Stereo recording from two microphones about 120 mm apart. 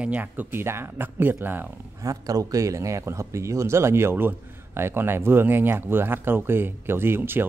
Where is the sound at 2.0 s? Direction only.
30° right (ahead or behind).